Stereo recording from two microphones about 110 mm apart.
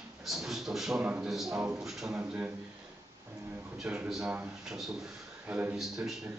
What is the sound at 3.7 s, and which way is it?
A man's voice, 5° right (ahead or behind).